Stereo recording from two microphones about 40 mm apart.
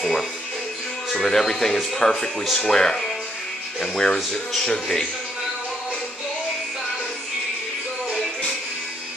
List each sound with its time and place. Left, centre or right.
0.0 s speech: centre